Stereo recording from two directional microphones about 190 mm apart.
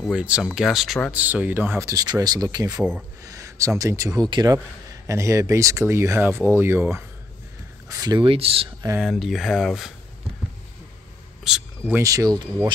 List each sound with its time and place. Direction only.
0.0 s speech: 5° right (ahead or behind); by 8.6 s 30° right (ahead or behind)
9.0 s speech: centre (ahead or behind)
11.4 s speech: 5° right (ahead or behind)
12.0 s speech: 15° right (ahead or behind)